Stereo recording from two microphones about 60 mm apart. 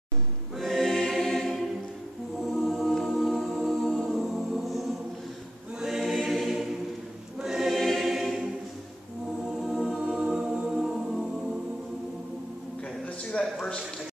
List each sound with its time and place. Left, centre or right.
0.6 s choir: centre
2.5 s music: centre
4.2 s music: centre
5.8 s choir: centre
9.6 s music: centre